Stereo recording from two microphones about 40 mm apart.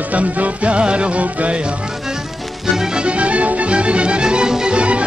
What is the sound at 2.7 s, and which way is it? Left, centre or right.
Speech, centre.